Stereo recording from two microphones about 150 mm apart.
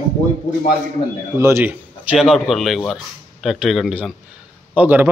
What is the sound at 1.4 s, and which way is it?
Speech, 15° right (ahead or behind).